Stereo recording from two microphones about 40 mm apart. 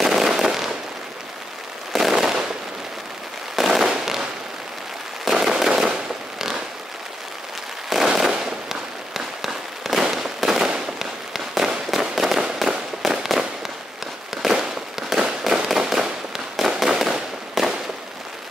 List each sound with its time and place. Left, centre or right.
0.0 s fireworks: centre
1.9 s fireworks: centre
3.5 s fireworks: centre
5.3 s firecracker: centre
7.9 s fireworks: centre